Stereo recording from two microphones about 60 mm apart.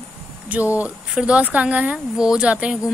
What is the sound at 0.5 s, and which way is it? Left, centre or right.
Speech, right.